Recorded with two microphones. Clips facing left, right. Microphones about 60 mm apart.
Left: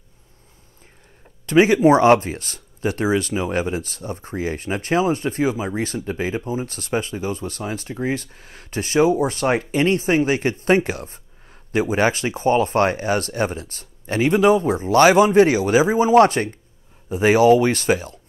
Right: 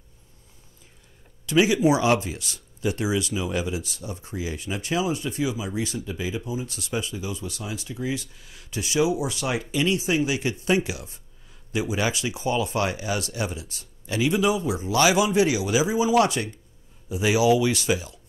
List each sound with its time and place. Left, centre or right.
1.4 s speech: left